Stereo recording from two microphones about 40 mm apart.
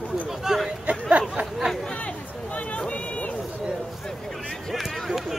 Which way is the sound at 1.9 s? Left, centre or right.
Left.